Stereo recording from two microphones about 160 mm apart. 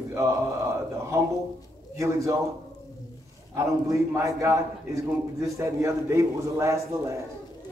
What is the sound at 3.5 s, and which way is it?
A man's voice, 20° right (ahead or behind).